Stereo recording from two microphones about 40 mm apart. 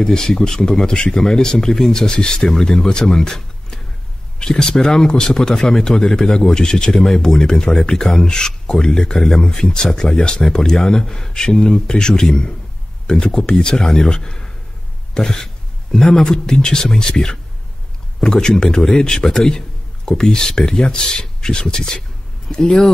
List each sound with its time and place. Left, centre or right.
0.0 s speech: centre